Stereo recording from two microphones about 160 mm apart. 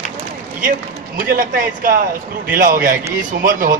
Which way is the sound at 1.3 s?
60° right (ahead or behind).